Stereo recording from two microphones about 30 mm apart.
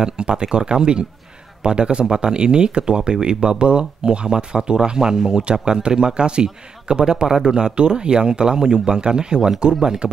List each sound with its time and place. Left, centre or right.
0.0 s speech: right
5.4 s speech: right